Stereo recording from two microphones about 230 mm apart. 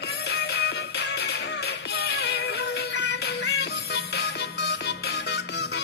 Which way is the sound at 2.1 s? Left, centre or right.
Left.